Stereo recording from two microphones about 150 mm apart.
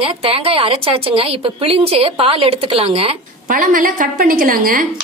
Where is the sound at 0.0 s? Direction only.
40° right (ahead or behind).